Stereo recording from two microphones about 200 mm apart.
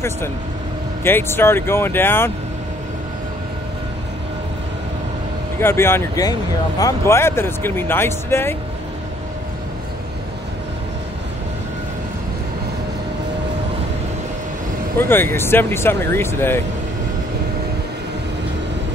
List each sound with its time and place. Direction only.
1.0 s speech: 10° left (ahead or behind)
5.6 s speech: 10° left (ahead or behind)
15.0 s speech: 10° left (ahead or behind)